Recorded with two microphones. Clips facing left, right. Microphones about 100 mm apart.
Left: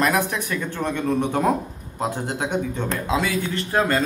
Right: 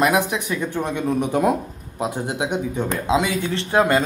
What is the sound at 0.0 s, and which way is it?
A man's voice, 15° right (ahead or behind).